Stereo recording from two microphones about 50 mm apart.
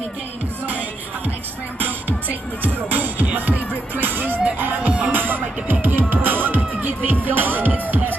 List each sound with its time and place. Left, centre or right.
0.7 s music: right